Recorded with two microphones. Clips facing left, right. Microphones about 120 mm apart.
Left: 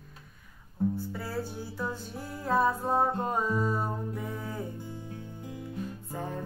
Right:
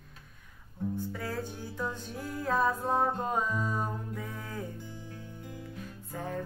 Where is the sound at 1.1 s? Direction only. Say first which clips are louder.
Left 1 dB; 10° left (ahead or behind).